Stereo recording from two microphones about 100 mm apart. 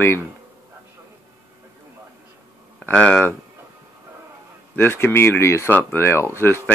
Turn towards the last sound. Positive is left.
turn(degrees=25)  # may be behind; listen again after turning